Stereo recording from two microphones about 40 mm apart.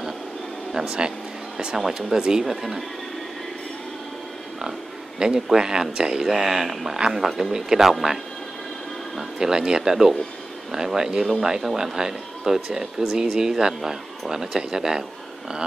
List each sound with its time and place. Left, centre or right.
0.7 s speech: right
1.8 s speech: centre
2.4 s speech: centre
5.2 s speech: centre
9.4 s speech: centre